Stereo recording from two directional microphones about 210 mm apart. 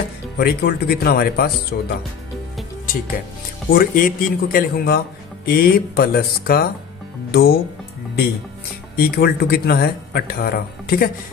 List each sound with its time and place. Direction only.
0.4 s speech: 50° left (ahead or behind)
3.7 s speech: 40° left (ahead or behind)
8.9 s speech: 45° left (ahead or behind)